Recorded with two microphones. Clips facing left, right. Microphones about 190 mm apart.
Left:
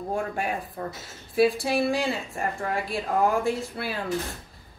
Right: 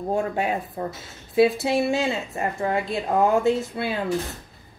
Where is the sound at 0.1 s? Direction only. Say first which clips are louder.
Right 5 dB; 25° right (ahead or behind).